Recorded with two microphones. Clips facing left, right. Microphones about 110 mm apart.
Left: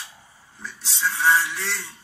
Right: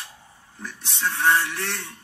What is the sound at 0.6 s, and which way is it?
Speech, 60° right (ahead or behind).